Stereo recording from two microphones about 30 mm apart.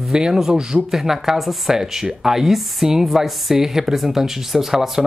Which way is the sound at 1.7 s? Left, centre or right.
Centre.